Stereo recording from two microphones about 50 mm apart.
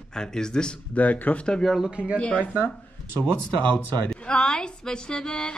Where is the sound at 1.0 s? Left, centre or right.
Left.